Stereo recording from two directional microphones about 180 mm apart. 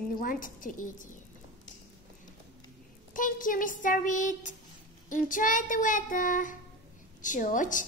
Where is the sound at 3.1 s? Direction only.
50° left (ahead or behind).